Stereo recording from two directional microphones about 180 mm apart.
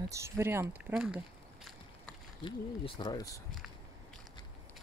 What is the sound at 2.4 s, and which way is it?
Speech, 25° left (ahead or behind).